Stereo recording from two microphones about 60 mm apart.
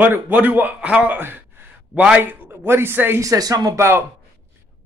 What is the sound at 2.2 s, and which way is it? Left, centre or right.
Speech, right.